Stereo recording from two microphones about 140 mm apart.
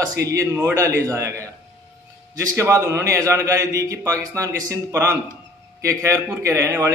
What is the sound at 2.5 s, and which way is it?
A man's voice, 20° right (ahead or behind).